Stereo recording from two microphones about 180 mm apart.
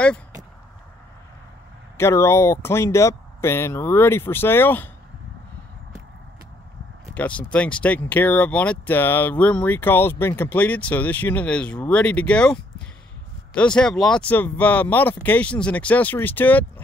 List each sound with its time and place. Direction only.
2.0 s speech: 15° left (ahead or behind)
7.2 s speech: 5° left (ahead or behind)